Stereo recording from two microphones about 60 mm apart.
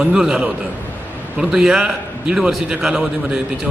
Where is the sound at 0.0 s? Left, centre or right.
Centre.